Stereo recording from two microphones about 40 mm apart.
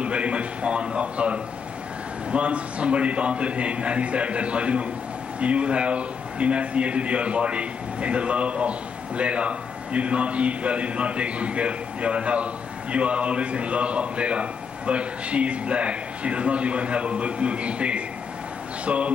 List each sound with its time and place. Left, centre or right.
0.0 s a man's voice: right